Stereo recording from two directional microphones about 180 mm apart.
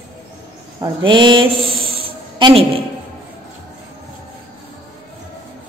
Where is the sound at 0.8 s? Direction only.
25° right (ahead or behind).